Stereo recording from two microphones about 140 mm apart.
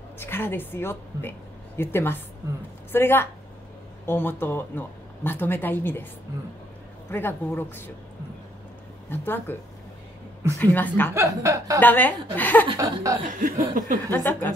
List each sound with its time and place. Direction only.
0.2 s speech: 15° left (ahead or behind)
7.1 s speech: 15° left (ahead or behind)
9.1 s speech: 15° left (ahead or behind)
10.6 s speech: 15° left (ahead or behind)
11.1 s speech: 20° right (ahead or behind)
11.8 s speech: 15° left (ahead or behind)
12.7 s speech: 25° right (ahead or behind)
13.3 s speech: 75° right (ahead or behind)
14.1 s speech: 15° left (ahead or behind)